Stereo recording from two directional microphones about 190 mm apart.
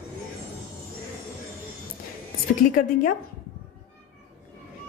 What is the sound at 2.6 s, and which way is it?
Speech, 45° left (ahead or behind).